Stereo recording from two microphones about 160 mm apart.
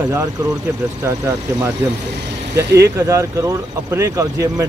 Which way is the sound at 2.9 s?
20° right (ahead or behind).